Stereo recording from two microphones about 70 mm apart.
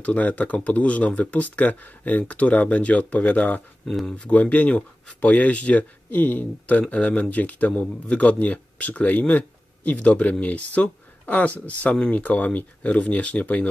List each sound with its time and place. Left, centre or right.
0.0 s speech: left